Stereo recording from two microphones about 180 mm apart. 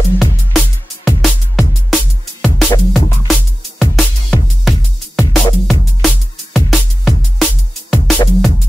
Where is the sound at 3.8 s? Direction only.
Centre (ahead or behind).